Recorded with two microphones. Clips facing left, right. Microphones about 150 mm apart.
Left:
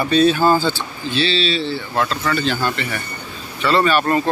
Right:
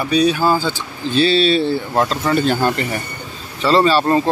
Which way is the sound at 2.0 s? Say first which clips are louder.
Right 1 dB; 30° right (ahead or behind).